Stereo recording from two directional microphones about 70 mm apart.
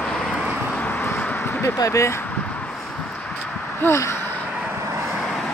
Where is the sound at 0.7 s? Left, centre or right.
Left.